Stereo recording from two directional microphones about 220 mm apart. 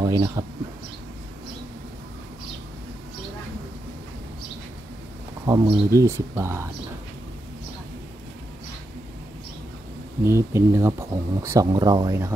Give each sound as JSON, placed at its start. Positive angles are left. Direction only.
{"t": 0.0, "sound": "speech", "side_deg": -15}
{"t": 5.4, "sound": "speech", "side_deg": -20}
{"t": 10.2, "sound": "speech", "side_deg": -10}